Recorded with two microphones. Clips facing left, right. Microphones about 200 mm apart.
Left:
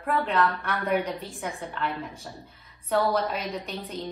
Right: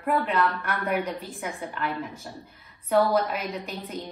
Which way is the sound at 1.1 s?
30° left (ahead or behind).